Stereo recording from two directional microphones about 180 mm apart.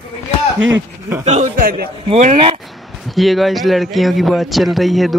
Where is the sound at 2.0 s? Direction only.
35° right (ahead or behind).